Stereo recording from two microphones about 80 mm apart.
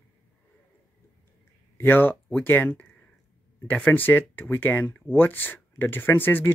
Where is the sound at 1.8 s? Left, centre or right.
Left.